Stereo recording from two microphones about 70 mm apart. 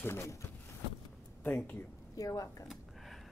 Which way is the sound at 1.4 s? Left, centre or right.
Left.